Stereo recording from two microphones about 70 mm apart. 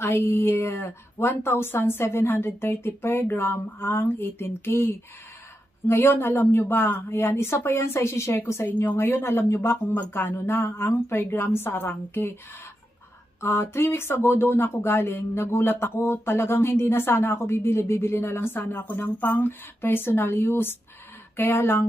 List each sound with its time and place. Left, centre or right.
0.0 s speech: left
13.4 s speech: left